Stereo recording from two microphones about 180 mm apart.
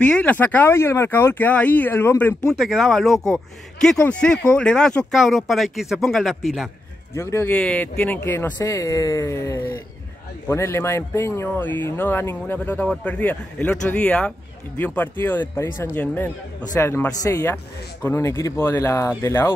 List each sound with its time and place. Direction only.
0.0 s speech: 5° left (ahead or behind)
2.5 s speech: centre (ahead or behind)
7.2 s speech: 15° left (ahead or behind)